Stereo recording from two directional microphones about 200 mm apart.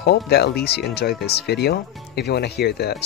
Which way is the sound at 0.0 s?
55° left (ahead or behind).